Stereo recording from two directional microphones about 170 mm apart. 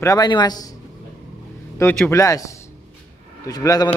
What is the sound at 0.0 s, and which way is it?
Speech, 20° left (ahead or behind).